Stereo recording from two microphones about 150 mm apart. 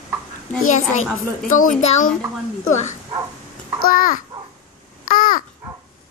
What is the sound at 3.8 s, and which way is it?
Speech, 65° left (ahead or behind).